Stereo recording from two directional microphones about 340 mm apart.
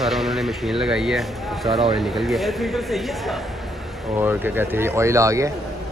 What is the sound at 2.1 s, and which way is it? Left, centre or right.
Speech, centre.